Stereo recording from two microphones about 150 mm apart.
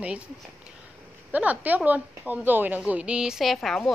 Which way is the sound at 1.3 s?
10° right (ahead or behind).